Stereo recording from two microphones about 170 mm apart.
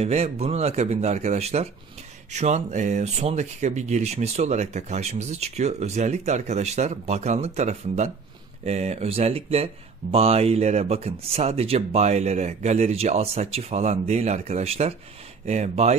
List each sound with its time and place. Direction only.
0.0 s speech: 40° right (ahead or behind)